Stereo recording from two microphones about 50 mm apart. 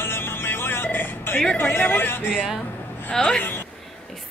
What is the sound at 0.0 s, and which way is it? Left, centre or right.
Vehicle, left.